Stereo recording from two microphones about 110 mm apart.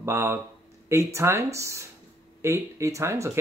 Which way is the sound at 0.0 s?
25° right (ahead or behind).